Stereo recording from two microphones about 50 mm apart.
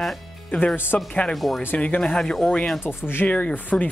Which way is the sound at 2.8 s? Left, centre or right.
Left.